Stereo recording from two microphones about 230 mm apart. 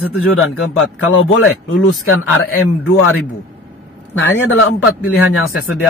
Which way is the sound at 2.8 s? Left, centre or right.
Left.